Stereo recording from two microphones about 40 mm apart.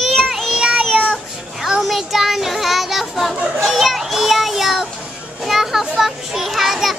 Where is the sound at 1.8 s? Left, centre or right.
Centre.